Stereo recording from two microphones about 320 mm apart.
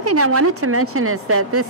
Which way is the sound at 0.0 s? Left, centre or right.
Right.